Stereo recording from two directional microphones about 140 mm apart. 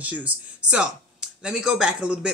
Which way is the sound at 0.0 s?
10° right (ahead or behind).